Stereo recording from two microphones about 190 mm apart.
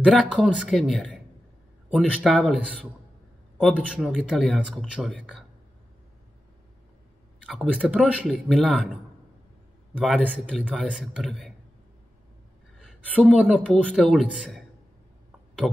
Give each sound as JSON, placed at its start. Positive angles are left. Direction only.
{"t": 0.0, "sound": "speech", "side_deg": 5}
{"t": 7.4, "sound": "speech", "side_deg": 0}
{"t": 9.9, "sound": "speech", "side_deg": 5}
{"t": 13.1, "sound": "speech", "side_deg": -5}
{"t": 15.6, "sound": "speech", "side_deg": 0}